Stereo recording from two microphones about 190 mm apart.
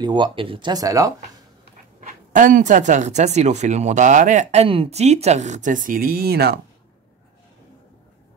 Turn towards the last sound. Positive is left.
turn(degrees=-55)  # may be behind; listen again after turning